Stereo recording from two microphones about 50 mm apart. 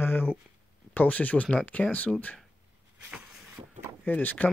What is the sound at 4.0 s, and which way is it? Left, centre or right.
Speech, left.